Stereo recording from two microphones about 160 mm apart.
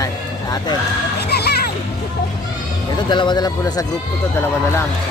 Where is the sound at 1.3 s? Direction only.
90° left.